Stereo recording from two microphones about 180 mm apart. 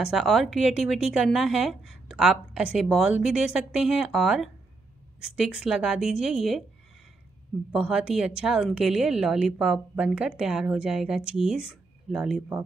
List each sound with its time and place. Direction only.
0.0 s a woman's voice: centre (ahead or behind)
7.7 s a woman's voice: 5° right (ahead or behind)